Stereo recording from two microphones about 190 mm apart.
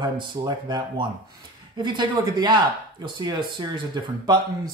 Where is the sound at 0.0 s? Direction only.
25° right (ahead or behind).